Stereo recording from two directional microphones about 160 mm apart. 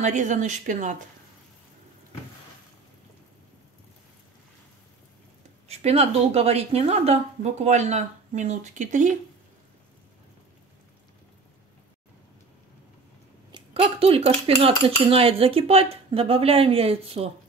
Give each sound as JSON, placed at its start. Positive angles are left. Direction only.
{"t": 0.0, "sound": "a woman's voice", "side_deg": -50}
{"t": 5.7, "sound": "a woman's voice", "side_deg": -40}
{"t": 13.5, "sound": "cutlery", "side_deg": -30}